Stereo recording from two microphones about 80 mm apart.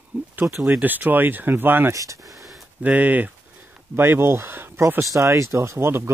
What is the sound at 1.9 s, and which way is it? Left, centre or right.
Speech, right.